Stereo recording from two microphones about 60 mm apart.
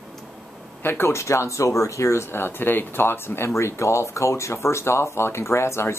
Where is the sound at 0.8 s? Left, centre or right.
Left.